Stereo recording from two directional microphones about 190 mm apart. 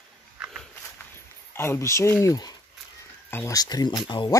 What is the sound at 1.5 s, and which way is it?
Speech, 15° left (ahead or behind).